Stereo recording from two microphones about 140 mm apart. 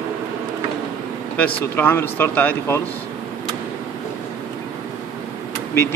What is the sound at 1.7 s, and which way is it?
Speech, 15° left (ahead or behind).